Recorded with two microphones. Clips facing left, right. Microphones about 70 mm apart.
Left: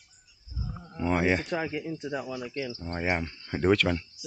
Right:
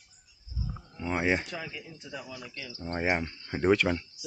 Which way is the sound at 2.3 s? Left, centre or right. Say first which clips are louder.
Left 9 dB; left.